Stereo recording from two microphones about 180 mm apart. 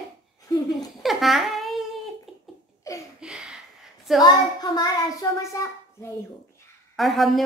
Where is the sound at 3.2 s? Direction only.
Centre (ahead or behind).